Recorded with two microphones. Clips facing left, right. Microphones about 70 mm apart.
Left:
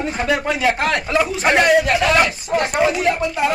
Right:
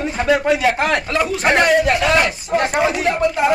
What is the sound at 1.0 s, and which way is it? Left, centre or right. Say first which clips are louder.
A man's voice: even; centre.